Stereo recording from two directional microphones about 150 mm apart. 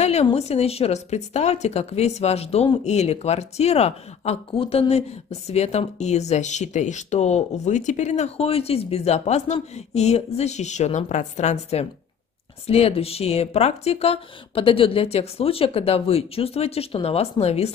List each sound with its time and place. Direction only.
0.0 s speech: 45° left (ahead or behind)